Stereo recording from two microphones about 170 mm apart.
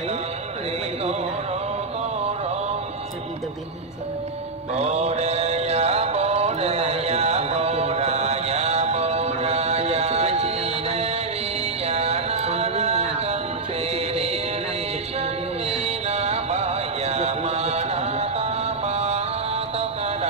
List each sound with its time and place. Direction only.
4.7 s music: 40° right (ahead or behind)
11.8 s mantra: 40° right (ahead or behind)
13.9 s music: 40° right (ahead or behind)
15.7 s music: 40° right (ahead or behind)